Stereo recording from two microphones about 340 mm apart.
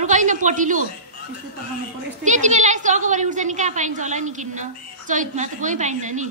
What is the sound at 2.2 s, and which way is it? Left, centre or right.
A woman's voice, right.